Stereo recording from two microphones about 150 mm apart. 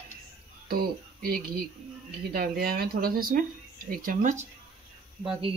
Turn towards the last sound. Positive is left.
turn(degrees=-35)  # may be behind; listen again after turning